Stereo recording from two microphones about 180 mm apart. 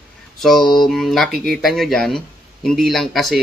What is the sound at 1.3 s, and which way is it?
Speech, 60° right (ahead or behind).